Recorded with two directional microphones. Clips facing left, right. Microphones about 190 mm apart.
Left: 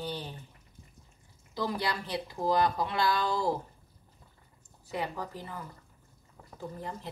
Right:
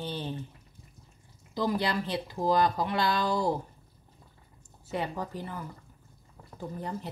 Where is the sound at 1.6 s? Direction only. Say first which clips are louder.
Right 4 dB; 20° right (ahead or behind).